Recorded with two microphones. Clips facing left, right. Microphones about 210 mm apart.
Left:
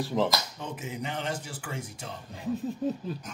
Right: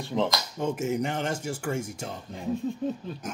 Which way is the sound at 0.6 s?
45° right (ahead or behind).